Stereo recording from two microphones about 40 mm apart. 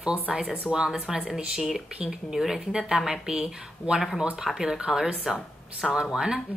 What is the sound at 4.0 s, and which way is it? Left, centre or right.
A woman's voice, centre.